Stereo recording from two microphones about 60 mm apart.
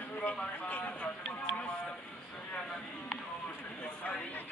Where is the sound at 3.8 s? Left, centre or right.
Left.